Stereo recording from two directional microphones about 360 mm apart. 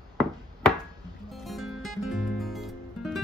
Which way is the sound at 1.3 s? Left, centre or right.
Centre.